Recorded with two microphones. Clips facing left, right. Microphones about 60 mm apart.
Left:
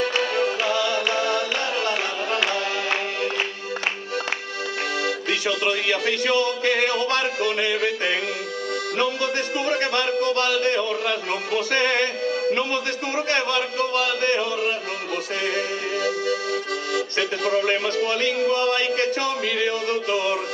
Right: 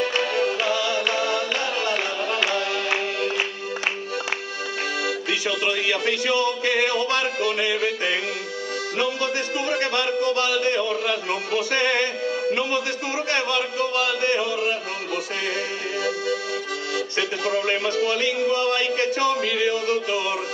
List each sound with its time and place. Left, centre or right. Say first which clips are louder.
0.0 s music: even; centre
5.0 s music: left 1 dB; centre
8.9 s a man's voice: left 1 dB; centre